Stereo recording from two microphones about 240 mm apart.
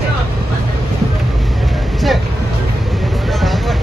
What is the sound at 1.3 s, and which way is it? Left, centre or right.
Vehicle, centre.